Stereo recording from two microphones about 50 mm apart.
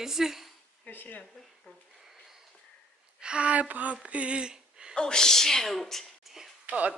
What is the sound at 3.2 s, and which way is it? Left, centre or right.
Speech, right.